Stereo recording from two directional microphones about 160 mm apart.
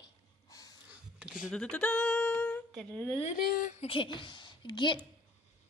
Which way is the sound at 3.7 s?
35° left (ahead or behind).